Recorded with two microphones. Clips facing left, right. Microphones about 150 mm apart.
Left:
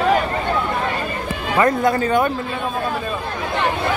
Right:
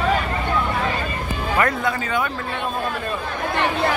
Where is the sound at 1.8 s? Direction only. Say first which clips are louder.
Left 6 dB; 40° left (ahead or behind).